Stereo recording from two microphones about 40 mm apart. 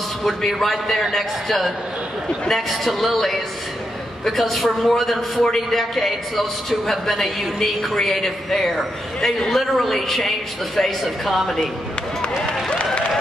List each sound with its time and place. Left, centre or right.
0.6 s a man's voice: centre
11.3 s a man's voice: centre
12.6 s applause: left